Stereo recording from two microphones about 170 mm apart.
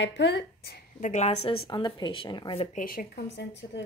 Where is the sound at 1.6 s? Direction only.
25° left (ahead or behind).